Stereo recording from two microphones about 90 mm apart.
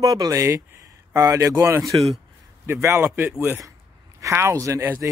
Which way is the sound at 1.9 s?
65° right (ahead or behind).